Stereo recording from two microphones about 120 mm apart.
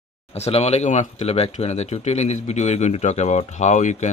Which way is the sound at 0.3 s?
60° left (ahead or behind).